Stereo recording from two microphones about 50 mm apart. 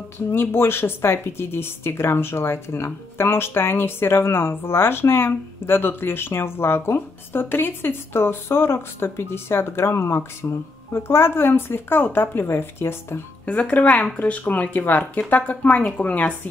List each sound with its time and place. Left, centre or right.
0.3 s speech: left
13.5 s speech: left